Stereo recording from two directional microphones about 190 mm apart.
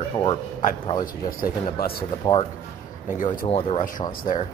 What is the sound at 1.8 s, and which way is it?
Speech, 55° left (ahead or behind).